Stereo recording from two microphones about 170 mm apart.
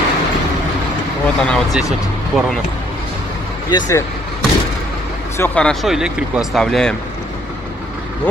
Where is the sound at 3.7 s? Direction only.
20° left (ahead or behind).